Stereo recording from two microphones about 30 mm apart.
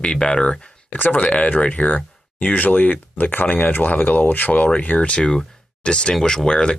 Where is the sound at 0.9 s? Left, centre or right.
Left.